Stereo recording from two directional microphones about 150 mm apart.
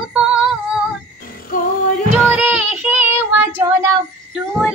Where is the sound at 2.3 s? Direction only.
10° right (ahead or behind).